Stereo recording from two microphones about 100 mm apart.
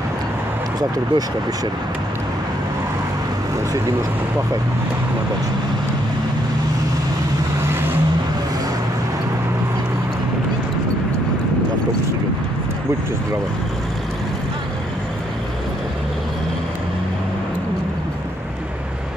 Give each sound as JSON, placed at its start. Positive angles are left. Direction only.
{"t": 0.7, "sound": "speech", "side_deg": -40}
{"t": 7.6, "sound": "vehicle", "side_deg": -25}